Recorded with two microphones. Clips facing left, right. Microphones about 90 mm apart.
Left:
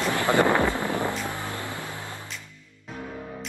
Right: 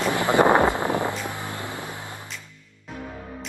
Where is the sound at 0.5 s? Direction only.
30° right (ahead or behind).